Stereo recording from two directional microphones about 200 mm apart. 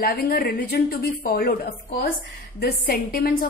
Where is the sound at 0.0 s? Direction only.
50° left (ahead or behind).